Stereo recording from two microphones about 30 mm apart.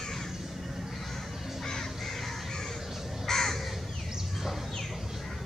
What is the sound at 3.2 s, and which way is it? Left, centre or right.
Crow, centre.